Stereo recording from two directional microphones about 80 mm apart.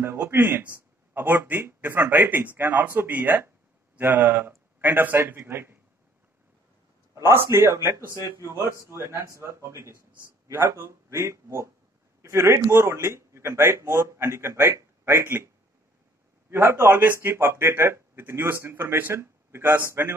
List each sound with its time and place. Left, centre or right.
0.0 s speech: right
7.2 s speech: right